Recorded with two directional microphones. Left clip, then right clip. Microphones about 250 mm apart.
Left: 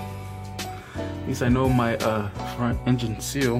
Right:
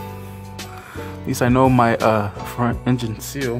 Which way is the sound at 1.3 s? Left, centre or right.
Centre.